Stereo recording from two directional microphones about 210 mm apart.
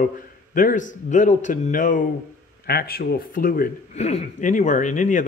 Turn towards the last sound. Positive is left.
turn(degrees=35)  # may be behind; listen again after turning